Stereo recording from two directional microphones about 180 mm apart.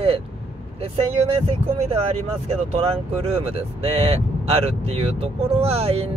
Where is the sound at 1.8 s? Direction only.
35° right (ahead or behind).